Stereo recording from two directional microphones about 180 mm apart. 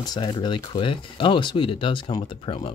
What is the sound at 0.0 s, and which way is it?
Speech, 25° left (ahead or behind).